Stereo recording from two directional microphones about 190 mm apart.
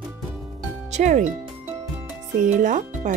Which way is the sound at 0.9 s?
40° right (ahead or behind).